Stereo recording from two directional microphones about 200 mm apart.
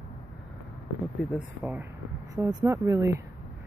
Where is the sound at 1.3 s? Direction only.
5° right (ahead or behind).